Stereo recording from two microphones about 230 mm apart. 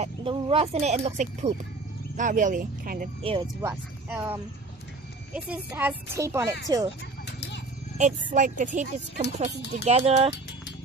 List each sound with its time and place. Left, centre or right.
0.0 s speech: right
3.2 s speech: right
3.6 s a woman's voice: centre
7.2 s a sound: left
8.3 s speech: right